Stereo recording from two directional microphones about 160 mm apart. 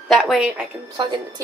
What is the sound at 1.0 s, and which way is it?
Speech, 25° right (ahead or behind).